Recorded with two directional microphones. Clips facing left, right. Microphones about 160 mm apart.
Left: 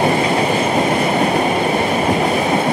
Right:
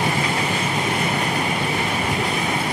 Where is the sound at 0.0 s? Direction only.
50° left (ahead or behind).